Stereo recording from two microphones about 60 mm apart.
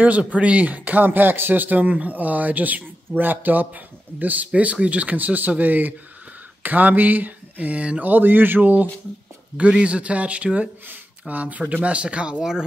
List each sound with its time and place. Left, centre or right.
0.0 s speech: right
8.1 s a sound: right
9.7 s speech: centre